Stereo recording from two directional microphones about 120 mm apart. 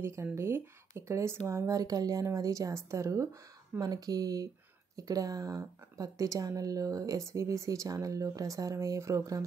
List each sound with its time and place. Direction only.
0.0 s speech: 20° right (ahead or behind)